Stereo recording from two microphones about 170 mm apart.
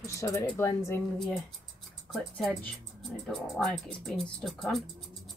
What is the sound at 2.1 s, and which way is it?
Speech, centre (ahead or behind).